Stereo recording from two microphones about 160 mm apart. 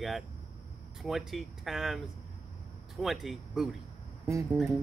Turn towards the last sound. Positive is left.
turn(degrees=-20)  # may be behind; listen again after turning